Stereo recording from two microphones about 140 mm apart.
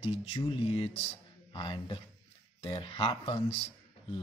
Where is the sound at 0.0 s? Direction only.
45° left (ahead or behind).